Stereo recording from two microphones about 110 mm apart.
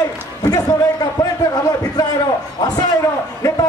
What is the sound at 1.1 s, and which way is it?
Speech, 35° left (ahead or behind).